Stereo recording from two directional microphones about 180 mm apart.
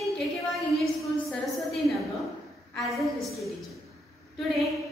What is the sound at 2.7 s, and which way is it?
Speech, centre (ahead or behind).